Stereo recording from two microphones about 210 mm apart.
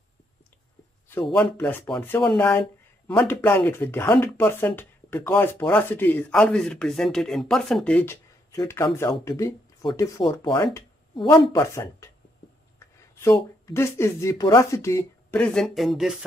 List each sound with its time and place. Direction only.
1.3 s speech: 10° left (ahead or behind)
13.2 s speech: 10° left (ahead or behind)
15.4 s speech: centre (ahead or behind)